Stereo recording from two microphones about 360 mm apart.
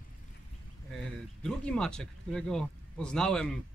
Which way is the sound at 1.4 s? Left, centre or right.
Centre.